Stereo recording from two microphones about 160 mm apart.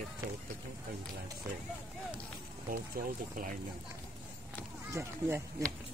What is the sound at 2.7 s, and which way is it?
Speech, 60° right (ahead or behind).